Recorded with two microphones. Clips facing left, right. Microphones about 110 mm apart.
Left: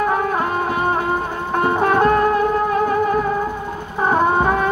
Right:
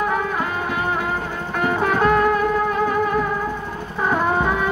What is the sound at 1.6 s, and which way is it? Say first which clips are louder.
Music: left 3 dB; 35° left (ahead or behind).